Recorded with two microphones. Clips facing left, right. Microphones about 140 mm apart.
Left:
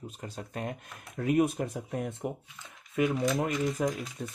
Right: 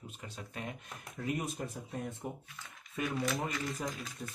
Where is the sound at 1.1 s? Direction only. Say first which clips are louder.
Left 11 dB; 60° left (ahead or behind); by 2.3 s 75° left (ahead or behind).